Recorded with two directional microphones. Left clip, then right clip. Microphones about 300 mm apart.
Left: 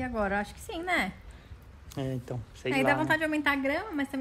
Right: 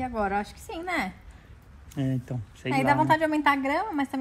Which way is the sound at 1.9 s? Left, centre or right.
Left.